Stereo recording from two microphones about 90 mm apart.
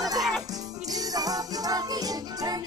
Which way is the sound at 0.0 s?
45° right (ahead or behind).